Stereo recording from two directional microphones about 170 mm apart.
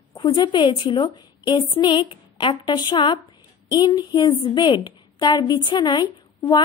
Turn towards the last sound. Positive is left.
turn(degrees=25)  # may be behind; listen again after turning